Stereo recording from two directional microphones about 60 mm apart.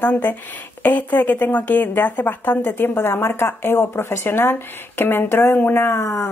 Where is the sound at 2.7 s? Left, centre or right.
Left.